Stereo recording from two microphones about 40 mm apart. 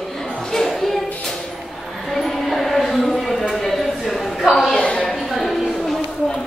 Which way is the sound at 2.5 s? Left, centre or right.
Centre.